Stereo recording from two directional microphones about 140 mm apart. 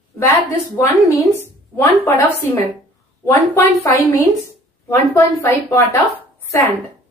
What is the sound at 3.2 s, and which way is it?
A woman's voice, 20° left (ahead or behind).